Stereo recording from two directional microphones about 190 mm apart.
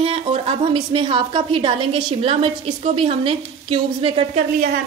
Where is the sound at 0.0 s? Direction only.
30° right (ahead or behind).